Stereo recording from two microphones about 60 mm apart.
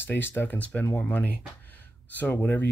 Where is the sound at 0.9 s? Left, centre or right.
Left.